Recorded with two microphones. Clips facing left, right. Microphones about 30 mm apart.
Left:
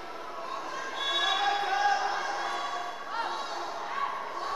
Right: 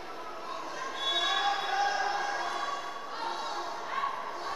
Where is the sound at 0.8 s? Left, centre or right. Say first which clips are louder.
Left 1 dB; centre.